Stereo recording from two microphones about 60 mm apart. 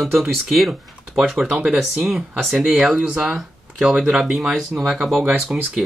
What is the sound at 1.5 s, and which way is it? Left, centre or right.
Speech, centre.